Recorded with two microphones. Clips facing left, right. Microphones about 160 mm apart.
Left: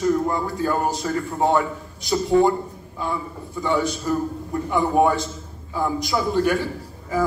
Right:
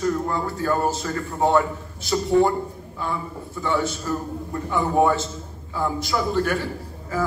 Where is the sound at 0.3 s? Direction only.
15° left (ahead or behind).